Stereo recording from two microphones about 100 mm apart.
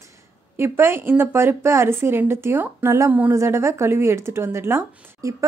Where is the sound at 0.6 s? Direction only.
25° right (ahead or behind).